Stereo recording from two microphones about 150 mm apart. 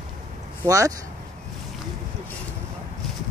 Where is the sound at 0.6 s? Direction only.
20° right (ahead or behind).